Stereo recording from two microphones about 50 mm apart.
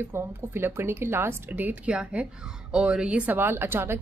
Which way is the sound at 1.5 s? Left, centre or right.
Right.